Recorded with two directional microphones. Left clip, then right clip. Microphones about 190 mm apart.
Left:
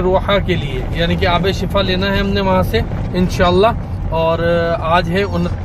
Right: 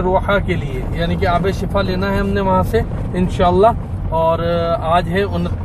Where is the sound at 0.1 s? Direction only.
10° left (ahead or behind).